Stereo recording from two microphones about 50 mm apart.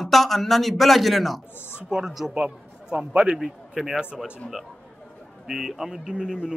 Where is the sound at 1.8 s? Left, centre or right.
Centre.